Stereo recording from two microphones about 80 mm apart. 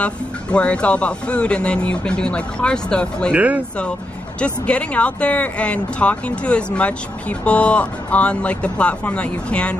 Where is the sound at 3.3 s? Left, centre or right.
Centre.